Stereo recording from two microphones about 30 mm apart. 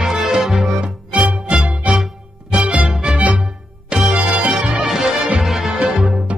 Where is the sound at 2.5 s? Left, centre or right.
Right.